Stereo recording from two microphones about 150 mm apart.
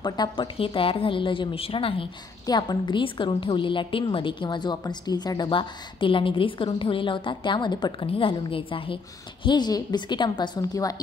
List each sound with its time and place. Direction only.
0.0 s a woman's voice: 30° left (ahead or behind)